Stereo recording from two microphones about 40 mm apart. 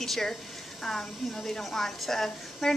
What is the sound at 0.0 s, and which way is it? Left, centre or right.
A woman's voice, centre.